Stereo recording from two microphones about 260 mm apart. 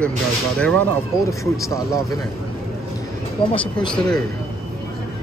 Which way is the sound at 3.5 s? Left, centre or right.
Centre.